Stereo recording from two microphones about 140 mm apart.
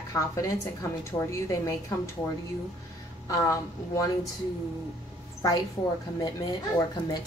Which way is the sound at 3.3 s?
25° left (ahead or behind).